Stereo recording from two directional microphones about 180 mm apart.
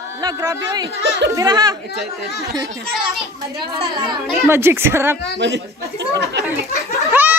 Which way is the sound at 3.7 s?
25° right (ahead or behind).